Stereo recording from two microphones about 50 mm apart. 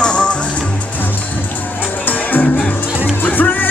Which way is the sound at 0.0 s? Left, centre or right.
Left.